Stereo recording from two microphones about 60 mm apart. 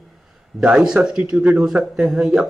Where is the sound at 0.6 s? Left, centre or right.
Centre.